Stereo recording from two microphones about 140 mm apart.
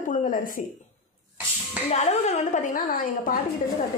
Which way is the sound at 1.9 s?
55° left (ahead or behind).